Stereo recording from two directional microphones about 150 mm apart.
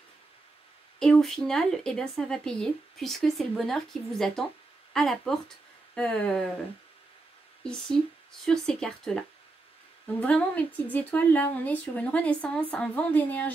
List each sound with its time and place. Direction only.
0.9 s speech: 5° left (ahead or behind)
7.6 s speech: 5° left (ahead or behind)
10.2 s a woman's voice: 10° left (ahead or behind)